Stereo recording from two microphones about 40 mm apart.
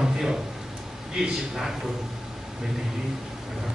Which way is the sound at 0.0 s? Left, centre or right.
Centre.